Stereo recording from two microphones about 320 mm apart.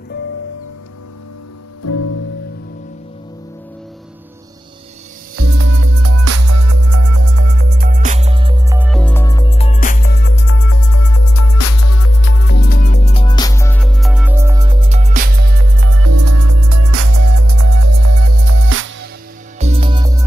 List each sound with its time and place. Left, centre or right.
1.8 s music: left
5.3 s music: right
7.2 s music: right; by 10.7 s left
10.7 s music: left; by 18.9 s right
19.6 s music: centre